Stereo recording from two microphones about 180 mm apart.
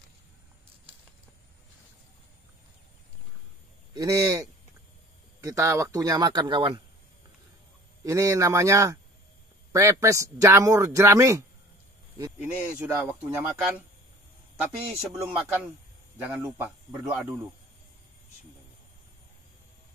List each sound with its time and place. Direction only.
3.9 s speech: 20° right (ahead or behind)
8.0 s speech: 20° right (ahead or behind)
15.1 s speech: 5° right (ahead or behind)